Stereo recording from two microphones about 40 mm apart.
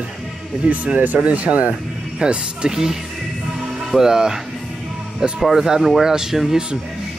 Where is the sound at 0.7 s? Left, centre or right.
Right.